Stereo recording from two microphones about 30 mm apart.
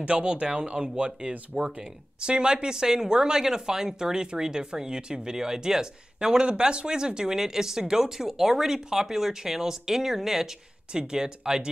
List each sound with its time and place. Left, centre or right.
0.0 s speech: right
1.5 s speech: centre
2.1 s speech: right; by 10.5 s centre
10.9 s speech: right